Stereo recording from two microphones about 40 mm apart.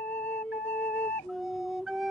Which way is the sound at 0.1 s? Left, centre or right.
Left.